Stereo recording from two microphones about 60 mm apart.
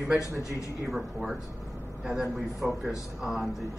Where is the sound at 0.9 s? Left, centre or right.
Centre.